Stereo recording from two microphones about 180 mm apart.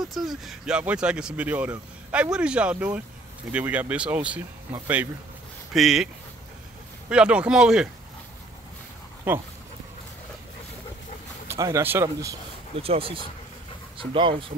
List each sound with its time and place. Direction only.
0.0 s a man's voice: centre (ahead or behind)
5.7 s a man's voice: centre (ahead or behind)
7.1 s a man's voice: 5° right (ahead or behind)
9.3 s speech: 10° right (ahead or behind)
11.4 s speech: 15° right (ahead or behind)
12.7 s speech: 30° right (ahead or behind)